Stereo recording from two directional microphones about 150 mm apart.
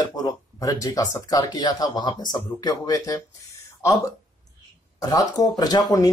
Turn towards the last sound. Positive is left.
turn(degrees=25)  # may be behind; listen again after turning